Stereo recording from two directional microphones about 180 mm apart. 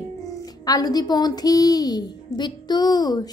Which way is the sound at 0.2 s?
20° left (ahead or behind).